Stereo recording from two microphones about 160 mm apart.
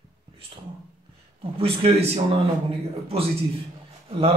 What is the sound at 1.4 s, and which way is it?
Speech, 35° right (ahead or behind).